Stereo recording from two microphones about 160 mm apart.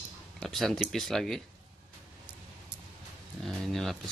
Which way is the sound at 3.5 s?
Centre (ahead or behind).